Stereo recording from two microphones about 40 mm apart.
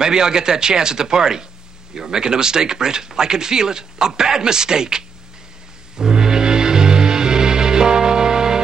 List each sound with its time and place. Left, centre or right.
0.0 s speech: centre
5.9 s music: centre